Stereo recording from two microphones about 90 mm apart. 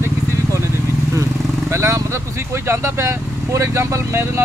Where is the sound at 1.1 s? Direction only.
30° right (ahead or behind).